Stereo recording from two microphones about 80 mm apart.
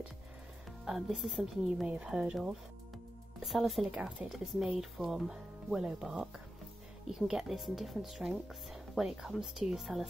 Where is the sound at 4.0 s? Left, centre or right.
Centre.